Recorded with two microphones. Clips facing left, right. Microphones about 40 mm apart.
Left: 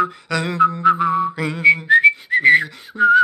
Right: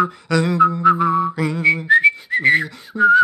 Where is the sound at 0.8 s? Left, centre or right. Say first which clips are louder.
Right 1 dB; left.